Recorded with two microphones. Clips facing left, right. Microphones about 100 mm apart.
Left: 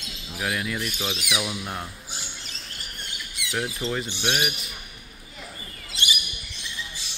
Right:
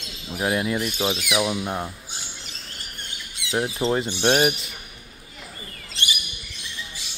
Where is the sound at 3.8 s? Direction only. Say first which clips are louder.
Right 6 dB; 35° right (ahead or behind).